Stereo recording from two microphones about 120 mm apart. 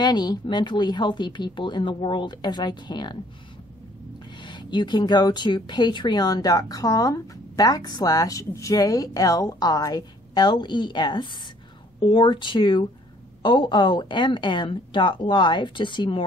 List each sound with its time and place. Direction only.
0.0 s speech: 35° left (ahead or behind)
4.4 s speech: 40° left (ahead or behind)